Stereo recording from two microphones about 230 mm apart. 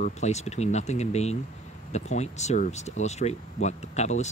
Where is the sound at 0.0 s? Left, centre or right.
Left.